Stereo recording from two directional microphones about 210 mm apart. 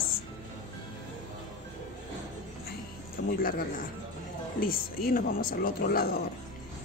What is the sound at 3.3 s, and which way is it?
Speech, 40° left (ahead or behind).